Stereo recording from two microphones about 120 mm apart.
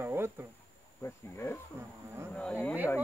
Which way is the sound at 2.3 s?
10° left (ahead or behind).